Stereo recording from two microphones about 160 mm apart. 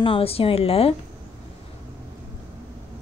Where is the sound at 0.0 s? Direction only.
35° left (ahead or behind).